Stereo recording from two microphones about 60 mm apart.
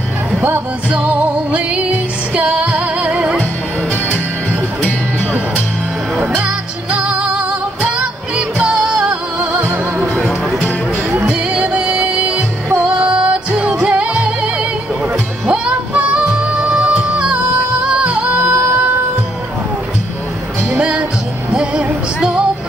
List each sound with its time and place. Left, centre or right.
0.8 s music: right
6.2 s music: centre
9.6 s music: right
10.1 s music: centre
11.1 s music: right
16.8 s music: centre
17.3 s music: centre
18.4 s a sound: right
20.8 s music: right